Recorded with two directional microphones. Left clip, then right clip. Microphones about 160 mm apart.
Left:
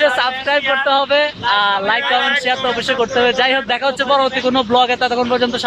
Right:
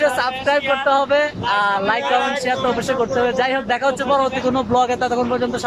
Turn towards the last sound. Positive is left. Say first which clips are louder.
# left 4 dB
turn(degrees=-5)  # may be behind; listen again after turning